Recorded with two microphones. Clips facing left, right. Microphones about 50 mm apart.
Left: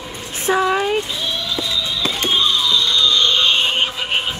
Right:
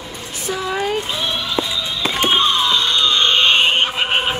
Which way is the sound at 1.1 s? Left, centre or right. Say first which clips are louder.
Right 2 dB; right.